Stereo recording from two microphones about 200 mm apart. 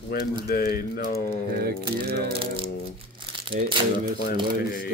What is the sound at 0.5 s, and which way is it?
Speech, 50° left (ahead or behind).